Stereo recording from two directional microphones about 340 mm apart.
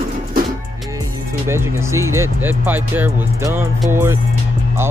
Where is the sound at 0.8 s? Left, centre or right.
Centre.